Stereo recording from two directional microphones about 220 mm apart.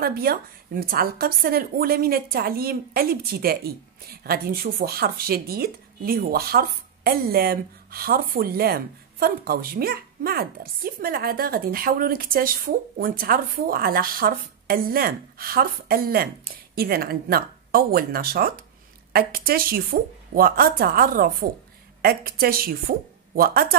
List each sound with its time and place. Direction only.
0.0 s a woman's voice: 45° right (ahead or behind)